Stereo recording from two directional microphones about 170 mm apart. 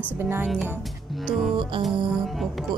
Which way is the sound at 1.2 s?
Centre (ahead or behind).